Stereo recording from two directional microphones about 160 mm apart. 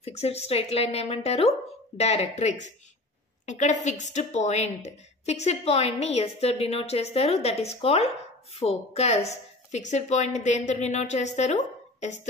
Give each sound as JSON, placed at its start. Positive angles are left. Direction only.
{"t": 0.0, "sound": "a woman's voice", "side_deg": 40}